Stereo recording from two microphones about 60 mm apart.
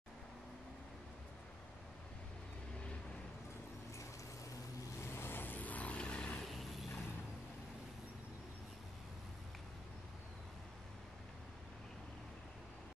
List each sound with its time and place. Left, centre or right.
5.0 s vehicle: left; by 6.4 s centre